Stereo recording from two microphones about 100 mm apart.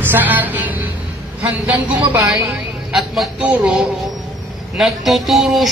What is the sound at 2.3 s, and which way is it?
A woman's voice, 5° right (ahead or behind).